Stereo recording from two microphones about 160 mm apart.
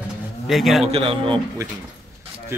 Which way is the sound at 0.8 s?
35° right (ahead or behind).